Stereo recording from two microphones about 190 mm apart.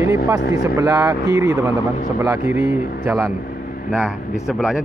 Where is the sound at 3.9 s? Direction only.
5° right (ahead or behind).